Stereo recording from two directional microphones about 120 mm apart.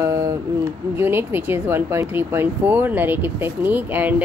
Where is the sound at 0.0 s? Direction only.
30° right (ahead or behind).